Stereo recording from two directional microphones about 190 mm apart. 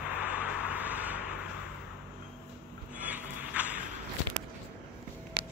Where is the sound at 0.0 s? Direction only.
10° right (ahead or behind).